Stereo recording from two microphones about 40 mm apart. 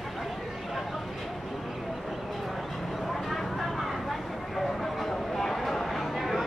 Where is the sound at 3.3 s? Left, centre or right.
Centre.